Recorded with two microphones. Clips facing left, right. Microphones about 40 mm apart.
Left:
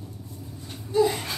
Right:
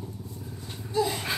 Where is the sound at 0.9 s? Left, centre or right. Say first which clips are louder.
Left 5 dB; centre.